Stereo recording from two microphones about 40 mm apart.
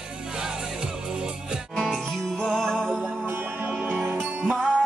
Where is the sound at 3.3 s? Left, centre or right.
Right.